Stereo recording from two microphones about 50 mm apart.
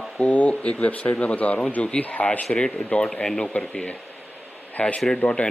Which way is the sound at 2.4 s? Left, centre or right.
Centre.